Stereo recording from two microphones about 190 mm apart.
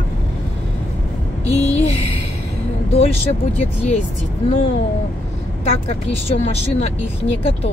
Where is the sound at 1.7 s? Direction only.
35° left (ahead or behind).